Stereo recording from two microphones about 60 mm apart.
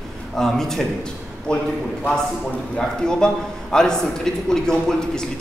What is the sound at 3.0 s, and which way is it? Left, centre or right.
A man's voice, centre.